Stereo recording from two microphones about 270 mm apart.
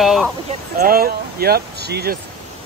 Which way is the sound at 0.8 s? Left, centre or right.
Right.